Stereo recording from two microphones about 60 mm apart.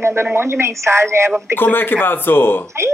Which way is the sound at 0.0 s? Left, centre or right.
Right.